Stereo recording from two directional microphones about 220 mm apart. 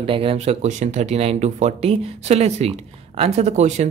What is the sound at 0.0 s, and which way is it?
Speech, 25° right (ahead or behind).